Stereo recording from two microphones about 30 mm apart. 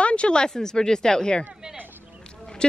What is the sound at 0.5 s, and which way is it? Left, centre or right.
Speech, left.